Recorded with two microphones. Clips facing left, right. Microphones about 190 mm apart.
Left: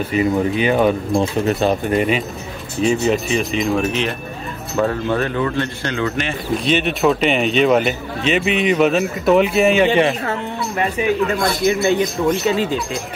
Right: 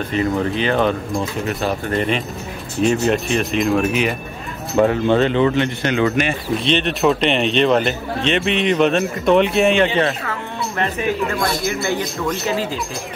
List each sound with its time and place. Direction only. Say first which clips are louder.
0.1 s speech: left 2 dB; 10° left (ahead or behind)
1.1 s a man's voice: left 5 dB; 25° left (ahead or behind)
2.0 s speech: left 2 dB; 5° left (ahead or behind)
4.7 s speech: right 4 dB; 20° right (ahead or behind)
6.6 s speech: left 1 dB; 5° left (ahead or behind)
11.6 s a man's voice: left 6 dB; 20° left (ahead or behind)